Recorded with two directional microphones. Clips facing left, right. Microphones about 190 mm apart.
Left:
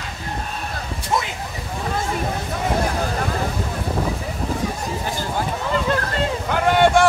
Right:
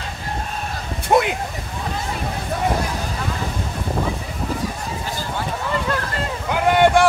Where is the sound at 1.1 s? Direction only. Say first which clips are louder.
Right 7 dB; 60° right (ahead or behind).